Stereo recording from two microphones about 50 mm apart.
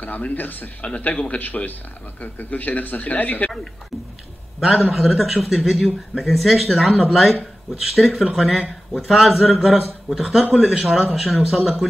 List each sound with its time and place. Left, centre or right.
0.0 s speech: left
4.6 s a man's voice: centre